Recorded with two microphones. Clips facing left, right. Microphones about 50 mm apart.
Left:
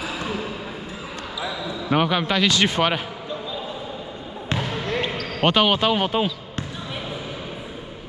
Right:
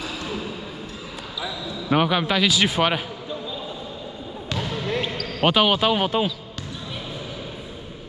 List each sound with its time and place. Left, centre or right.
0.2 s basketball bounce: left
1.9 s speech: centre
4.6 s a sound: left
4.8 s basketball bounce: centre
5.4 s speech: centre